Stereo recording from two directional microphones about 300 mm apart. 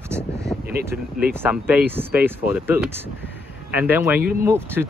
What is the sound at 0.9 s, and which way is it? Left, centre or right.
Speech, centre.